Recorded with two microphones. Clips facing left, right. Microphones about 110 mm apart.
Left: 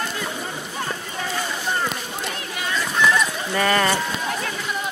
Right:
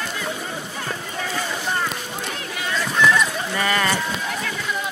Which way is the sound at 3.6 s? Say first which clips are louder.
Left 3 dB; 35° left (ahead or behind).